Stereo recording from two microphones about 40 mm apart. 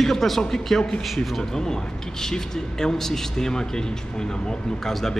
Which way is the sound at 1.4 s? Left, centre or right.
Centre.